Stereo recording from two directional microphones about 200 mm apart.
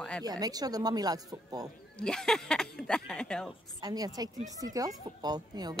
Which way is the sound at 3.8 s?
20° right (ahead or behind).